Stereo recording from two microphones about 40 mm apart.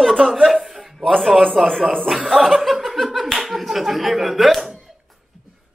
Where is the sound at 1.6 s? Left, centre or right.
Centre.